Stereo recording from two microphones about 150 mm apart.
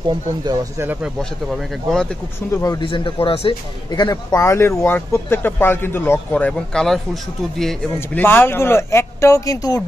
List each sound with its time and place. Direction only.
0.7 s speech: 10° right (ahead or behind)
1.6 s speech: centre (ahead or behind)
2.5 s speech: 20° left (ahead or behind)
2.8 s speech: 35° left (ahead or behind); by 8.2 s 5° left (ahead or behind)
8.2 s speech: 15° left (ahead or behind)